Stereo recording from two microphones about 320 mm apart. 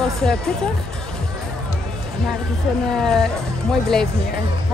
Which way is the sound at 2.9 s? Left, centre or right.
Centre.